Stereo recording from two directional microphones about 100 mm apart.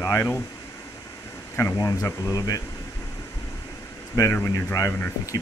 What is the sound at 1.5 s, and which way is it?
Speech, 25° left (ahead or behind).